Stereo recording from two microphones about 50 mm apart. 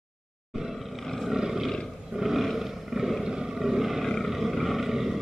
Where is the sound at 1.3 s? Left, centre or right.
Centre.